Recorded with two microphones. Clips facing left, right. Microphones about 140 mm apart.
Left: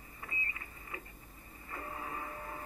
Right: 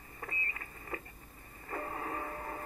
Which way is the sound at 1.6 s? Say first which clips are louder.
Right 4 dB; 45° right (ahead or behind).